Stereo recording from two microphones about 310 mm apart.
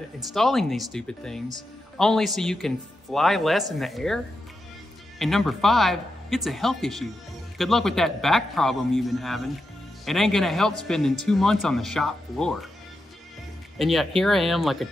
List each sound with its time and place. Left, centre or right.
0.3 s speech: centre
5.2 s speech: centre
13.7 s speech: centre